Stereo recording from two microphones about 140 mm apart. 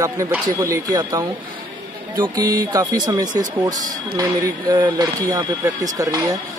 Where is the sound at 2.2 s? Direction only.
25° right (ahead or behind).